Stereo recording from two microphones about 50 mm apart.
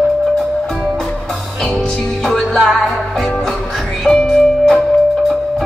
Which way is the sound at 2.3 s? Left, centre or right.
Centre.